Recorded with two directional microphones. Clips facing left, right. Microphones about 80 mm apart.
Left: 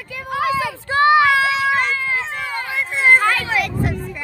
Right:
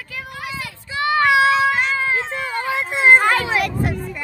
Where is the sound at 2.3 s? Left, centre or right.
Right.